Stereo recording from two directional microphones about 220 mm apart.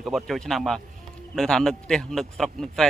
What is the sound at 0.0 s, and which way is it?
Speech, centre (ahead or behind).